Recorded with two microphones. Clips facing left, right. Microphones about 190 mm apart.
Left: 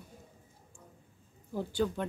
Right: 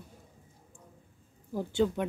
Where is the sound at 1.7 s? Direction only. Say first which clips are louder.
Right 4 dB; 15° right (ahead or behind).